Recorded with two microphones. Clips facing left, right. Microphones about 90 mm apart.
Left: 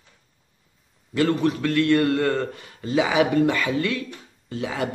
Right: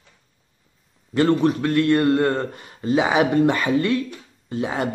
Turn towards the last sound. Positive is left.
turn(degrees=-25)  # may be behind; listen again after turning